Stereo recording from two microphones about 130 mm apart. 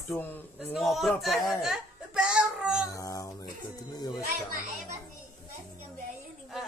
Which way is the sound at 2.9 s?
25° left (ahead or behind).